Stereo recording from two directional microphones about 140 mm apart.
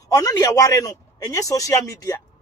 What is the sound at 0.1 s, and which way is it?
Speech, 25° left (ahead or behind).